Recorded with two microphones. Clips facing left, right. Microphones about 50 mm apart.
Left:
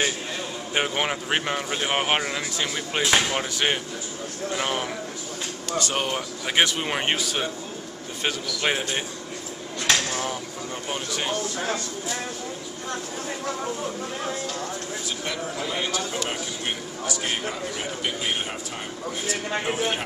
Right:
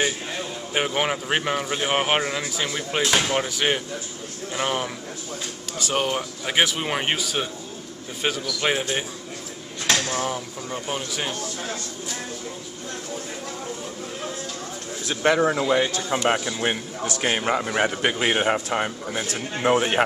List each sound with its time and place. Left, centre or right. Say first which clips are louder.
0.7 s speech: right 2 dB; centre
15.0 s a man's voice: right 14 dB; right